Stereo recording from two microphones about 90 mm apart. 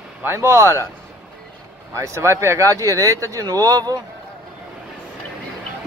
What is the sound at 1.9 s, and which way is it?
Speech, 30° right (ahead or behind).